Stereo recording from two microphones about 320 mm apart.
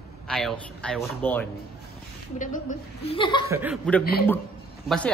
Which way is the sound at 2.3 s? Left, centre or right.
Left.